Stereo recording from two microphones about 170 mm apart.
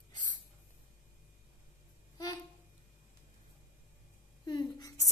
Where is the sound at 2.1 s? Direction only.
20° left (ahead or behind).